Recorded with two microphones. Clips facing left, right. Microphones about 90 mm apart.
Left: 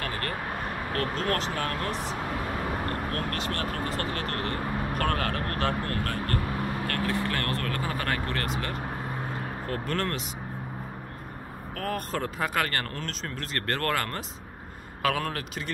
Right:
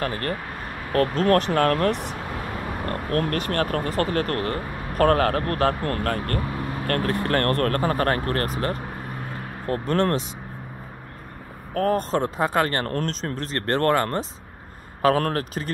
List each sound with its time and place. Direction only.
0.0 s speech: 35° right (ahead or behind)
1.5 s speech: 60° right (ahead or behind)
3.1 s speech: 45° right (ahead or behind)
11.7 s speech: 35° right (ahead or behind)